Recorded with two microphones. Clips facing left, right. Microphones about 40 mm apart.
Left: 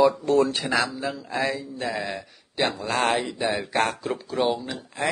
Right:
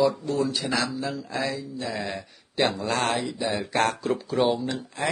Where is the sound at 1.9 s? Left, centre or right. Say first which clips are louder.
Left 1 dB; centre.